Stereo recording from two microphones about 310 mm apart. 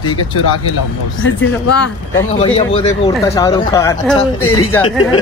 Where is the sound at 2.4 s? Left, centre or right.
Centre.